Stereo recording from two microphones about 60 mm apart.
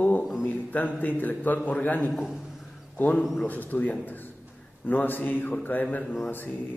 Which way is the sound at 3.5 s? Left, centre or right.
Left.